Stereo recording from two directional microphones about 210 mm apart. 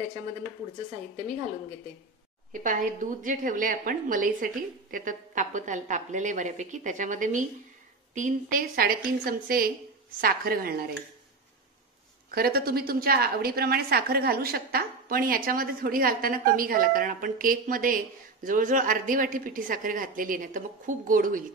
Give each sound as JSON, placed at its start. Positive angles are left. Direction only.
{"t": 2.5, "sound": "a woman's voice", "side_deg": -40}
{"t": 12.3, "sound": "a woman's voice", "side_deg": -45}